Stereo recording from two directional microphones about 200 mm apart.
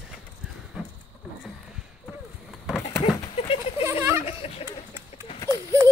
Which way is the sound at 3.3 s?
30° left (ahead or behind).